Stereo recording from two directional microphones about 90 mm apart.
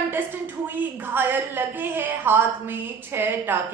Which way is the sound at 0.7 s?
20° right (ahead or behind).